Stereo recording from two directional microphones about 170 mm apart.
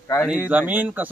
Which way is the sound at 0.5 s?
10° right (ahead or behind).